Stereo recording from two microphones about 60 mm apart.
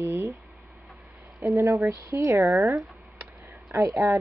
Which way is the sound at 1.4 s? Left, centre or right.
Right.